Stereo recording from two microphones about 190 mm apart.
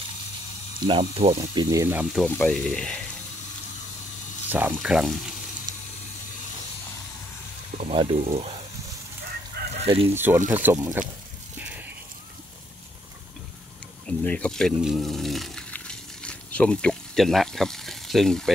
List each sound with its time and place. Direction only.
0.8 s speech: 30° right (ahead or behind)
1.4 s speech: 20° right (ahead or behind)
2.1 s frying: 5° left (ahead or behind)
4.5 s frying: 10° right (ahead or behind)
7.7 s speech: 30° right (ahead or behind)
8.2 s speech: 45° right (ahead or behind)
9.8 s fowl: 30° right (ahead or behind)
10.0 s speech: 10° right (ahead or behind)
14.0 s speech: 5° left (ahead or behind)